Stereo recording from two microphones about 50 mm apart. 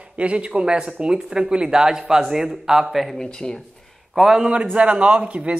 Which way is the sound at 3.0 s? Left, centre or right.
Centre.